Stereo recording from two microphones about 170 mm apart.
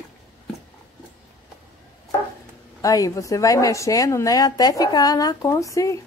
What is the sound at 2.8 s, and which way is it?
Speech, 20° left (ahead or behind).